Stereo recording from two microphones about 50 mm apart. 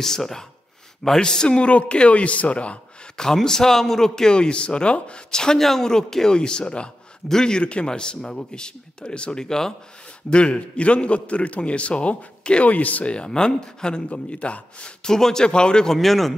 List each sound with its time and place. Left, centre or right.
0.0 s a man's voice: centre; by 2.8 s left
3.2 s a man's voice: centre
15.9 s a man's voice: centre